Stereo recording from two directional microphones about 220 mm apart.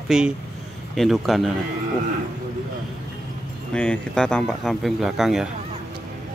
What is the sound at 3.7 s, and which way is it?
Speech, 5° left (ahead or behind).